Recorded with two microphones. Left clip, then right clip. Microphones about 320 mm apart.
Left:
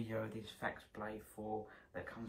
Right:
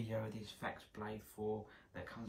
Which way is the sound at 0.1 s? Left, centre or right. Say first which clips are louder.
Even; centre.